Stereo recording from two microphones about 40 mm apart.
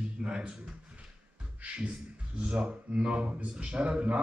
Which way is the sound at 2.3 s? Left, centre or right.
Centre.